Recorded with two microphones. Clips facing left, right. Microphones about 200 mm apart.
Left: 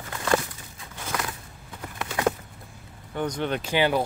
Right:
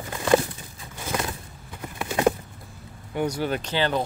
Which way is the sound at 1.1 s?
25° right (ahead or behind).